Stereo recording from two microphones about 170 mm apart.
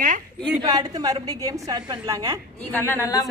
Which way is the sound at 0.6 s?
25° right (ahead or behind).